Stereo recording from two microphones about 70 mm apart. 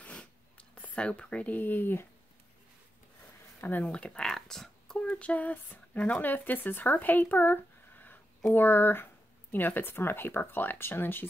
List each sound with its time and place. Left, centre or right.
0.0 s a sound: centre
3.6 s speech: left
3.9 s speech: centre; by 11.2 s left